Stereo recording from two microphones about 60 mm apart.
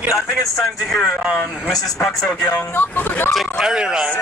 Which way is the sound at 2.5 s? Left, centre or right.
Left.